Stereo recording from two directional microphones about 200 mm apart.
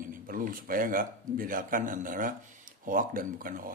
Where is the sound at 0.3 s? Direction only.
45° right (ahead or behind).